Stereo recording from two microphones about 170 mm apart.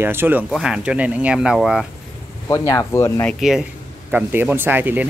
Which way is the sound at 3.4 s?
5° right (ahead or behind).